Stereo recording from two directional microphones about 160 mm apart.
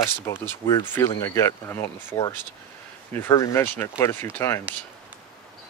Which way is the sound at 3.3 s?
20° left (ahead or behind).